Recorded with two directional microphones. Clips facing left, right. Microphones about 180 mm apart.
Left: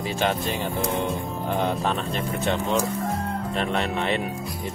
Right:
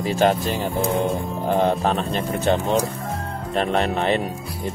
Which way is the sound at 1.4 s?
40° right (ahead or behind).